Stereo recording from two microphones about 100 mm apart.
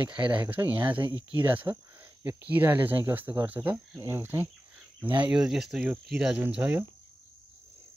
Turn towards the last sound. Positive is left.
turn(degrees=-15)  # may be behind; listen again after turning